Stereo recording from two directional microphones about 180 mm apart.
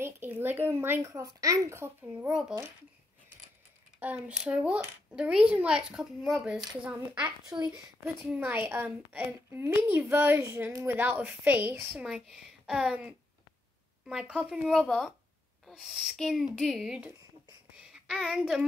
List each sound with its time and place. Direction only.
0.0 s a woman's voice: 10° right (ahead or behind)
4.0 s a child's voice: 5° right (ahead or behind)
7.4 s a woman's voice: 20° right (ahead or behind); by 17.1 s 5° right (ahead or behind)
17.7 s child singing: centre (ahead or behind)